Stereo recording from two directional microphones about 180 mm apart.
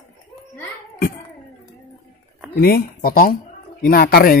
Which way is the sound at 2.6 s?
60° left (ahead or behind).